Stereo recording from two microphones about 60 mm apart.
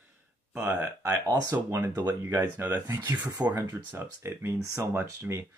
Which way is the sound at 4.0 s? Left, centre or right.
Right.